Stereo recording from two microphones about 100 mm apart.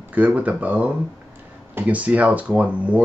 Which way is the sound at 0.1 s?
15° right (ahead or behind).